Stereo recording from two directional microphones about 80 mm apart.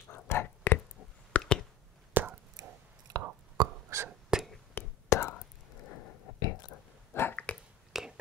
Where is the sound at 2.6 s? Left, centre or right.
Right.